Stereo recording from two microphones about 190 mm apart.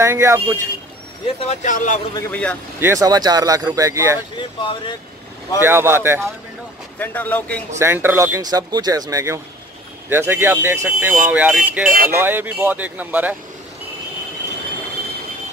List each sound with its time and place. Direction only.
0.0 s speech: 15° right (ahead or behind)
1.2 s speech: 35° left (ahead or behind)
2.1 s speech: 10° left (ahead or behind)
2.8 s speech: 15° right (ahead or behind)
4.4 s speech: 25° left (ahead or behind)
5.6 s speech: 10° right (ahead or behind)
7.0 s speech: 10° left (ahead or behind)
7.8 s speech: 10° right (ahead or behind)